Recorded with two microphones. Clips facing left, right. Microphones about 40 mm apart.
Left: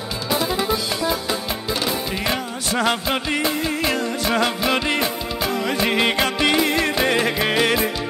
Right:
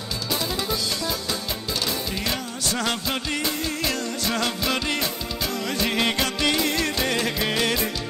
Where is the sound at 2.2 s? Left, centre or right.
Centre.